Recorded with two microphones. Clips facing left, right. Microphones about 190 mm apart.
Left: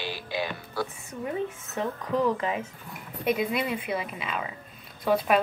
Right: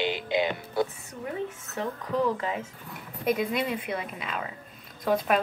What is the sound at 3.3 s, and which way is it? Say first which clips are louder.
A woman's voice: even; 5° left (ahead or behind).